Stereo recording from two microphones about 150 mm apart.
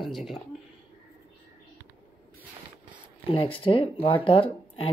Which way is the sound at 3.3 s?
35° left (ahead or behind).